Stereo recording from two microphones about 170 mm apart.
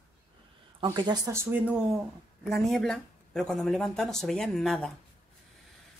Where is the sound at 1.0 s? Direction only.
25° right (ahead or behind).